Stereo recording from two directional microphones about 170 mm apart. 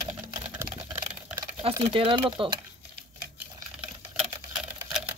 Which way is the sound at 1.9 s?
30° right (ahead or behind).